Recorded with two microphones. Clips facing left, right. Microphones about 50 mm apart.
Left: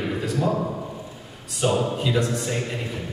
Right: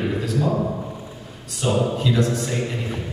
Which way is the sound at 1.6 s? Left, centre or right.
Centre.